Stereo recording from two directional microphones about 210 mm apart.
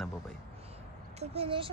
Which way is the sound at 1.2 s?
30° right (ahead or behind).